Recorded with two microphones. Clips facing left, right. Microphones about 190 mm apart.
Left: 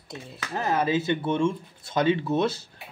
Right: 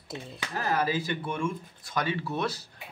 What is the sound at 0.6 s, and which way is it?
Speech, 20° left (ahead or behind).